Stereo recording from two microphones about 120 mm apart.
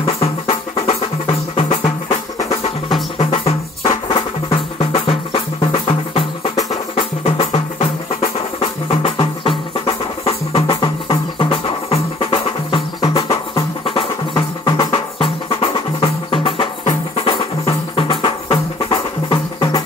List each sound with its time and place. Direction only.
0.0 s music: 55° left (ahead or behind)
16.8 s music: 60° left (ahead or behind)
17.6 s music: 50° left (ahead or behind)